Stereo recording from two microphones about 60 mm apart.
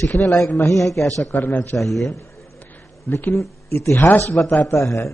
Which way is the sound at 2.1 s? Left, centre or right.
Left.